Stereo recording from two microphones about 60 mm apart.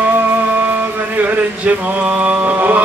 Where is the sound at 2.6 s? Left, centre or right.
Right.